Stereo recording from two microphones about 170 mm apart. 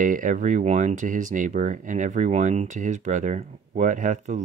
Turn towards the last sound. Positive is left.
turn(degrees=-45)  # may be behind; listen again after turning